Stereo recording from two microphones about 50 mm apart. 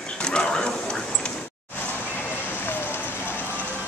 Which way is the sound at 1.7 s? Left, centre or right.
Left.